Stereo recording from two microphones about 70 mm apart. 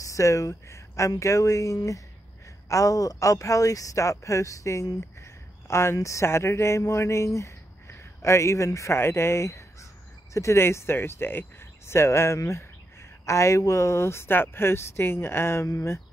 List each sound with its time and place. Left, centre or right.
0.0 s speech: left
5.2 s a sound: left
5.9 s speech: left